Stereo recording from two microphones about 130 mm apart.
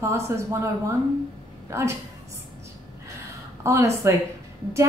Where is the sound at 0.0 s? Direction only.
20° right (ahead or behind).